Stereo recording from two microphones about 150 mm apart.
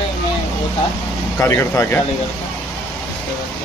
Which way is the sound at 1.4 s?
20° left (ahead or behind).